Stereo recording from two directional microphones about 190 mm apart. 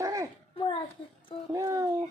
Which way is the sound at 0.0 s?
15° right (ahead or behind).